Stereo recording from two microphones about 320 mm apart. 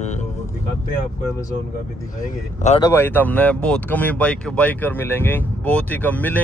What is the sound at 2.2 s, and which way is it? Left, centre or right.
Speech, left.